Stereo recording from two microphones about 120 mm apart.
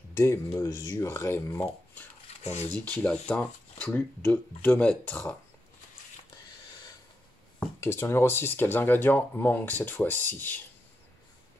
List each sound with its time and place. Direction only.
0.1 s speech: 25° left (ahead or behind)
2.2 s a sound: 65° left (ahead or behind)
2.8 s speech: 10° left (ahead or behind)
7.8 s speech: 20° left (ahead or behind)